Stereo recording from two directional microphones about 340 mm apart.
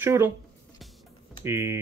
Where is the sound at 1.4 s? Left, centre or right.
Centre.